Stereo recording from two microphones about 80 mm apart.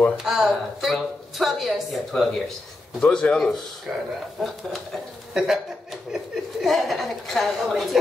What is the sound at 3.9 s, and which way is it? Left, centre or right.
Speech, centre.